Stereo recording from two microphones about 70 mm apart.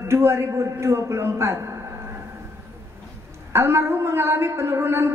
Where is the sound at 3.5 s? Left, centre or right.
Right.